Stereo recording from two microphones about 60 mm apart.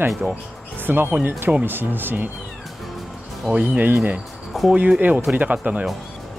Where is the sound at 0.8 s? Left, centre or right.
Right.